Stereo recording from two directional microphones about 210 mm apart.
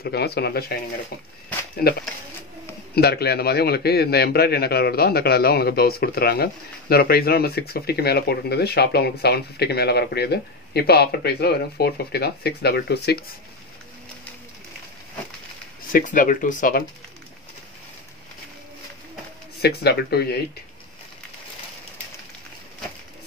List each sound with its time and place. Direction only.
0.0 s a man's voice: 50° left (ahead or behind)
1.8 s a man's voice: 45° left (ahead or behind)
15.9 s speech: 40° left (ahead or behind)
19.6 s a man's voice: 50° left (ahead or behind)